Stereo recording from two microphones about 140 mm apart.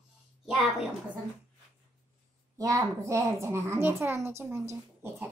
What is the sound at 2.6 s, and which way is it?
A woman's voice, 20° right (ahead or behind).